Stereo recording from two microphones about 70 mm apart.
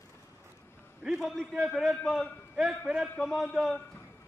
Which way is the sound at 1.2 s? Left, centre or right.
Centre.